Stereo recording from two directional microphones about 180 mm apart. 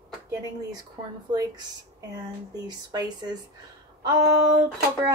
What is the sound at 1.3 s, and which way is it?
Speech, 20° right (ahead or behind).